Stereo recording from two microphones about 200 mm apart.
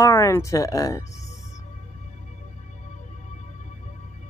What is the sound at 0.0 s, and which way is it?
Speech, 15° left (ahead or behind).